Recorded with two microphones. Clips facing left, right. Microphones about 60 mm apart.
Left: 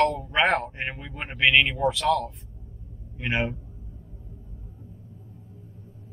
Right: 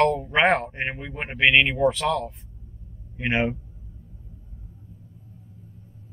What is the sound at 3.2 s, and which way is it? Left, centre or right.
Speech, right.